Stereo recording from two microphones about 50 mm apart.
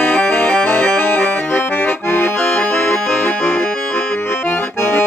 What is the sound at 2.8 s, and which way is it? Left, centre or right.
Music, left.